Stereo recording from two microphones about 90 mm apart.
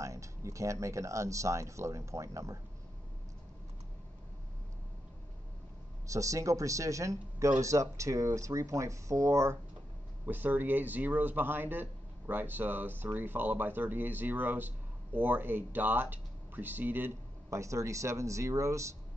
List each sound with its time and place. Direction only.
0.0 s speech: 35° right (ahead or behind)
6.0 s speech: 35° right (ahead or behind)
10.2 s a man's voice: 20° right (ahead or behind)
17.5 s speech: 35° right (ahead or behind)